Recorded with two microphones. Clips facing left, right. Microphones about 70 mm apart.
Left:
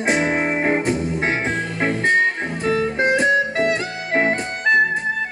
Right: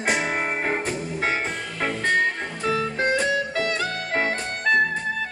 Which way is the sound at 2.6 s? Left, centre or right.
Left.